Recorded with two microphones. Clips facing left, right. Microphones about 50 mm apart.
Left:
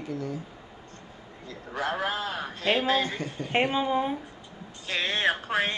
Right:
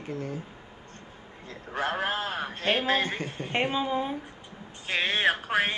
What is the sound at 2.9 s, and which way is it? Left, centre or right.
Speech, right.